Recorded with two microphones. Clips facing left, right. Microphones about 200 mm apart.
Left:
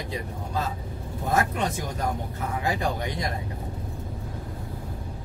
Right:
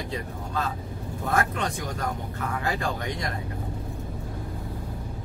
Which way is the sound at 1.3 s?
20° left (ahead or behind).